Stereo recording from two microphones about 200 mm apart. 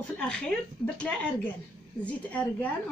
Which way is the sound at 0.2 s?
5° left (ahead or behind).